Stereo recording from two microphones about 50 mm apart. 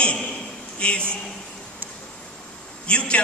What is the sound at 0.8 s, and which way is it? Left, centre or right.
Speech, left.